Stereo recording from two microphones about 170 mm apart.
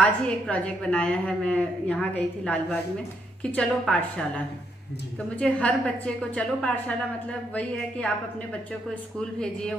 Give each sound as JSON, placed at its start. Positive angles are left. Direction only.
{"t": 0.0, "sound": "a woman's voice", "side_deg": 5}
{"t": 5.4, "sound": "a woman's voice", "side_deg": 5}
{"t": 9.4, "sound": "speech", "side_deg": 5}